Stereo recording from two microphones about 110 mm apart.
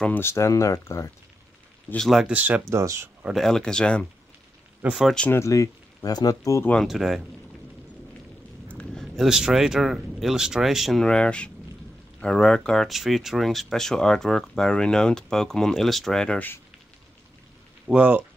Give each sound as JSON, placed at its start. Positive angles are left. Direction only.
{"t": 0.0, "sound": "speech", "side_deg": 20}
{"t": 2.0, "sound": "speech", "side_deg": 0}
{"t": 2.3, "sound": "speech", "side_deg": -15}
{"t": 2.7, "sound": "speech", "side_deg": -25}
{"t": 3.3, "sound": "speech", "side_deg": 5}
{"t": 4.8, "sound": "speech", "side_deg": -5}
{"t": 5.3, "sound": "speech", "side_deg": 25}
{"t": 6.6, "sound": "speech", "side_deg": 10}
{"t": 6.9, "sound": "speech", "side_deg": -5}
{"t": 8.6, "sound": "speech", "side_deg": 10}
{"t": 17.8, "sound": "speech", "side_deg": -10}